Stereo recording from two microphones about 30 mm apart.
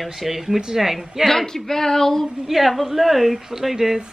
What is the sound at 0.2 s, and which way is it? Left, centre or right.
A woman's voice, centre.